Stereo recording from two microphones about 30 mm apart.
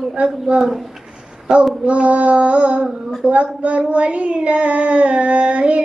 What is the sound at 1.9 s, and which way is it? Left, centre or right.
Child singing, right.